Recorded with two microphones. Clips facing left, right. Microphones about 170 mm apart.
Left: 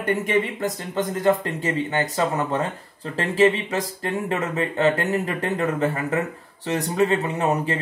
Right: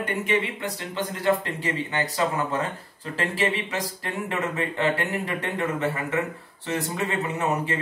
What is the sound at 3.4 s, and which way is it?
Speech, 35° left (ahead or behind).